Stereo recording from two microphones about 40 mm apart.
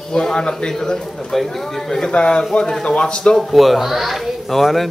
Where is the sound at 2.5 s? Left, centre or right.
Centre.